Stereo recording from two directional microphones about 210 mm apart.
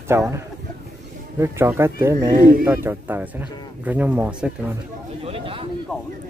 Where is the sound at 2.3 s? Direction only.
45° right (ahead or behind).